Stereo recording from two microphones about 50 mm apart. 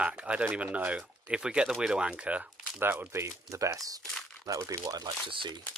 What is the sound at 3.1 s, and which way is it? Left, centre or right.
Speech, right.